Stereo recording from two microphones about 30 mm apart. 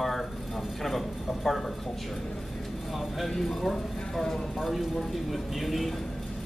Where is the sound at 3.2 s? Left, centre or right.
Centre.